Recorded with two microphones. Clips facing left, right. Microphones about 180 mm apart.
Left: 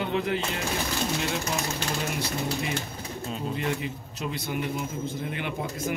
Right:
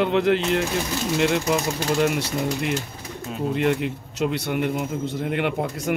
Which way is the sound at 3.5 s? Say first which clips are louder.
Right 11 dB; 65° right (ahead or behind).